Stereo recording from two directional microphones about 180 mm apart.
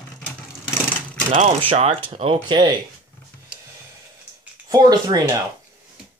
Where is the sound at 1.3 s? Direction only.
40° right (ahead or behind).